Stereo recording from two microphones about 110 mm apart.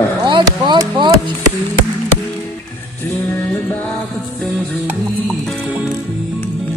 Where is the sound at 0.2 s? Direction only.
45° right (ahead or behind).